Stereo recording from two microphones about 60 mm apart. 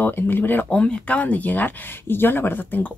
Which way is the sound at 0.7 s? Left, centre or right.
Left.